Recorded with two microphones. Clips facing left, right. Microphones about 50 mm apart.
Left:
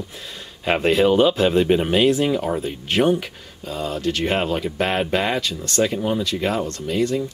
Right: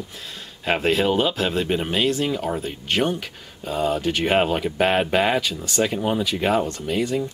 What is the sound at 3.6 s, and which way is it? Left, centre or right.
Speech, centre.